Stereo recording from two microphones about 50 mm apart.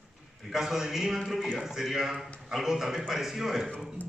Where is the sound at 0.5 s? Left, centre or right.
Centre.